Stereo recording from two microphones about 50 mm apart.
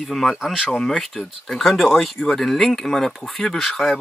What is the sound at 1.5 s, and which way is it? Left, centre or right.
Speech, centre.